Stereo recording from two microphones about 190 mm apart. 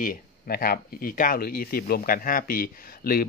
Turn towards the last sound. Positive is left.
turn(degrees=50)  # may be behind; listen again after turning